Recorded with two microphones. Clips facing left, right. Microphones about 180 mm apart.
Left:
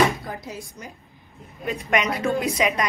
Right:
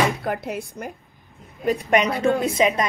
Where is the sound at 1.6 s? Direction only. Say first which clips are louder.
Right 4 dB; 35° right (ahead or behind).